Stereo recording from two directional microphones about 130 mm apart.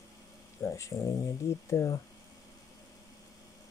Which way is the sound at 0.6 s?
25° left (ahead or behind).